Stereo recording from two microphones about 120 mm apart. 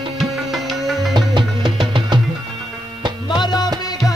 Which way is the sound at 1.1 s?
45° right (ahead or behind).